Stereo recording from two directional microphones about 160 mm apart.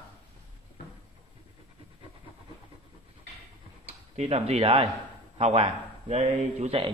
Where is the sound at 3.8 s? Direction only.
45° right (ahead or behind).